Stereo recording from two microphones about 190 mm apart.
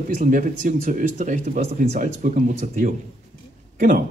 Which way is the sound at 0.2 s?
45° right (ahead or behind).